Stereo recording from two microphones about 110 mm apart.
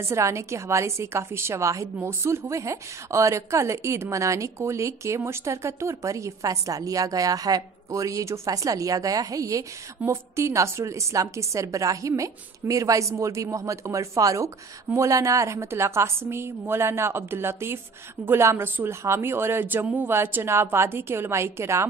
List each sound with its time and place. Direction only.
0.0 s a woman's voice: 25° right (ahead or behind)